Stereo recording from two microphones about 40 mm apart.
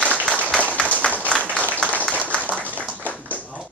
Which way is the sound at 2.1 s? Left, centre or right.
Right.